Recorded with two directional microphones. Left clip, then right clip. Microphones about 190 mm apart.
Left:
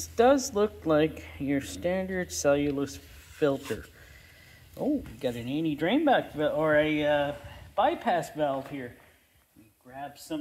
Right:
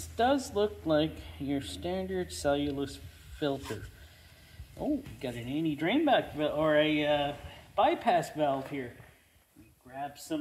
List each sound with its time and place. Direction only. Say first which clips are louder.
0.0 s a sound: left 6 dB; 45° left (ahead or behind)
0.6 s speech: left 3 dB; 40° left (ahead or behind); by 8.5 s 25° left (ahead or behind)
9.9 s speech: even; 30° left (ahead or behind)